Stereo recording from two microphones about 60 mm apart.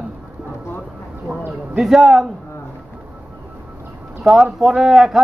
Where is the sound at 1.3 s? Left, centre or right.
Centre.